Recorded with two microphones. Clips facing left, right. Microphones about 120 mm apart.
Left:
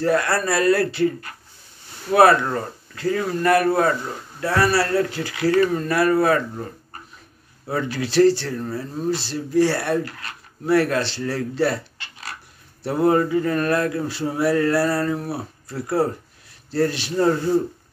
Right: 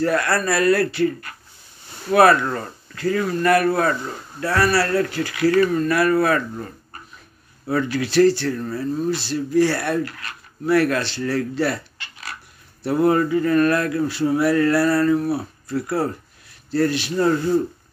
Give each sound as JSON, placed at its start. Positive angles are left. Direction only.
{"t": 0.0, "sound": "speech", "side_deg": 25}
{"t": 7.6, "sound": "speech", "side_deg": 25}
{"t": 8.5, "sound": "speech", "side_deg": 15}
{"t": 9.1, "sound": "speech", "side_deg": 30}
{"t": 12.8, "sound": "speech", "side_deg": 25}